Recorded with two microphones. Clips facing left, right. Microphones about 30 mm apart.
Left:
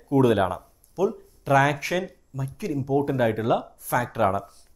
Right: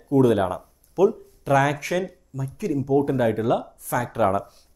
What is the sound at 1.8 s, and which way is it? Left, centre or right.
Speech, centre.